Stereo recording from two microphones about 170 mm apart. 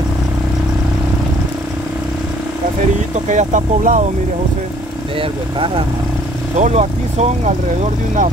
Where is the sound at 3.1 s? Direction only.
45° right (ahead or behind).